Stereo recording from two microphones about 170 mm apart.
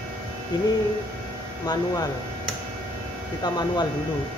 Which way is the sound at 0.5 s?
25° left (ahead or behind).